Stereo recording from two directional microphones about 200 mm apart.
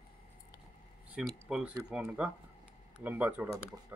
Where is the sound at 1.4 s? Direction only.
10° right (ahead or behind).